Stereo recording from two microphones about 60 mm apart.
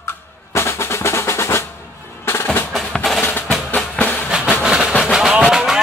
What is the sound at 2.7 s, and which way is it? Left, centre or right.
Percussion, centre.